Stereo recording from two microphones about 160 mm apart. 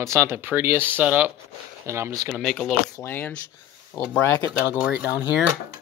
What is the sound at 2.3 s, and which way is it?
Speech, 5° left (ahead or behind).